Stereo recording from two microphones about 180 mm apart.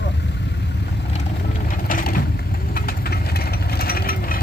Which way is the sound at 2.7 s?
55° left (ahead or behind).